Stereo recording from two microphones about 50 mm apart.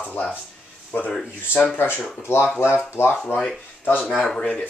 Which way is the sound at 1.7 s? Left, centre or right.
Left.